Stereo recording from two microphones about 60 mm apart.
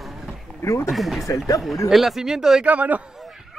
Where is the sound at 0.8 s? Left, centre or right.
Centre.